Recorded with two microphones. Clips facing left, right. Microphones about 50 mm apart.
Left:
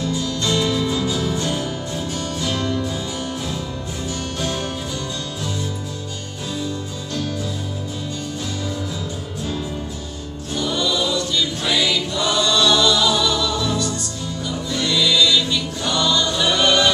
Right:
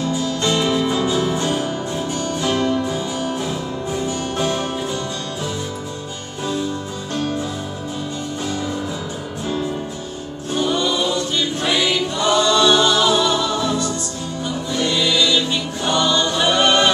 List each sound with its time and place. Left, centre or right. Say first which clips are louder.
0.0 s music: right 2 dB; right
7.2 s music: right 3 dB; right
10.5 s choir: right 3 dB; right
14.4 s music: right 2 dB; right